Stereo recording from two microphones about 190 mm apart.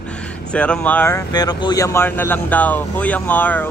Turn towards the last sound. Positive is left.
turn(degrees=10)  # may be behind; listen again after turning